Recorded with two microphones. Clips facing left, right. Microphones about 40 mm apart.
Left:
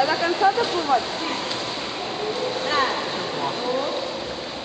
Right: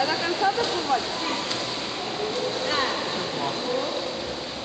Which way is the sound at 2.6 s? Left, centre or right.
Centre.